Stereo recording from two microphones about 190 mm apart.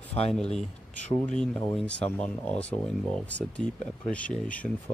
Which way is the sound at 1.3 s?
5° left (ahead or behind).